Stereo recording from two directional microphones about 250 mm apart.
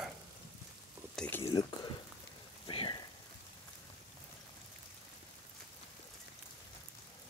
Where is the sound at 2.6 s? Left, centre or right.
Centre.